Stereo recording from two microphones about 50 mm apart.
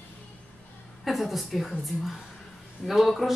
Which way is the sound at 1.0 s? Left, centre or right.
Centre.